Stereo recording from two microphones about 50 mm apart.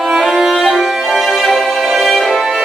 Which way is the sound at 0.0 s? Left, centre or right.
Centre.